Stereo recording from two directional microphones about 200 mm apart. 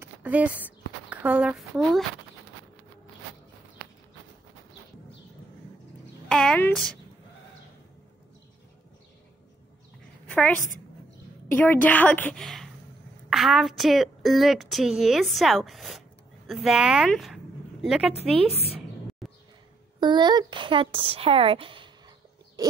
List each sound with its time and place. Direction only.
0.0 s speech: 5° right (ahead or behind)
6.2 s a woman's voice: 5° left (ahead or behind)
10.3 s a woman's voice: 5° left (ahead or behind)
20.0 s a woman's voice: 20° right (ahead or behind)